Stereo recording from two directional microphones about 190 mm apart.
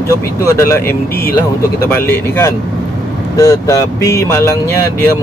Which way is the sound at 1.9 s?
15° left (ahead or behind).